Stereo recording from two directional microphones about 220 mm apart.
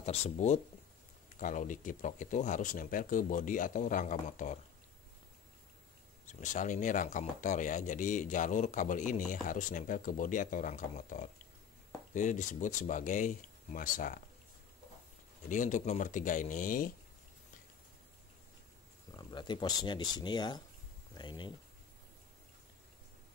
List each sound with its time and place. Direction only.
0.0 s speech: 30° left (ahead or behind)
6.2 s speech: 35° left (ahead or behind)
15.4 s speech: 35° left (ahead or behind)
19.1 s speech: 20° left (ahead or behind)